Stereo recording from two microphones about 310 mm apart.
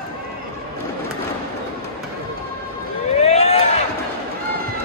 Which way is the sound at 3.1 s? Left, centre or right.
Left.